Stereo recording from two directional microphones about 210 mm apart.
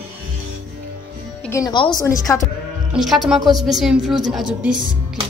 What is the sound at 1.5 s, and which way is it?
Speech, 15° left (ahead or behind).